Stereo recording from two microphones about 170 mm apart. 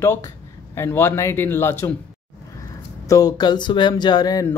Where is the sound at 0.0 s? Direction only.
15° left (ahead or behind).